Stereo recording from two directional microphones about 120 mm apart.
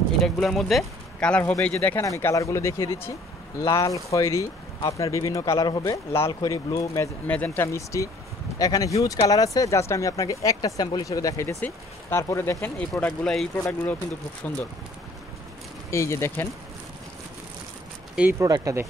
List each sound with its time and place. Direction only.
0.2 s speech: centre (ahead or behind); by 6.9 s 30° left (ahead or behind)
7.2 s speech: 15° left (ahead or behind)
13.2 s speech: 5° left (ahead or behind)
15.9 s speech: 25° left (ahead or behind)
18.4 s speech: 30° right (ahead or behind)